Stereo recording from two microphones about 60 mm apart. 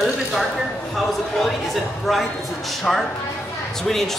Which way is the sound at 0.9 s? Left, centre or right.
Centre.